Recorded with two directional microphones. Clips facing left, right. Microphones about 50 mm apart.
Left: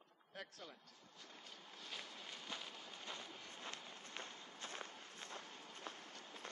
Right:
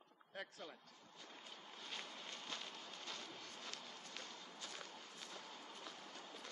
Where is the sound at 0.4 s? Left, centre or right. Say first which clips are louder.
Right 2 dB; centre.